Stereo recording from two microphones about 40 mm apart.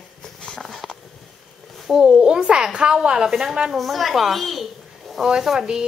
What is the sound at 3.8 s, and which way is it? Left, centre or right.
A woman's voice, centre.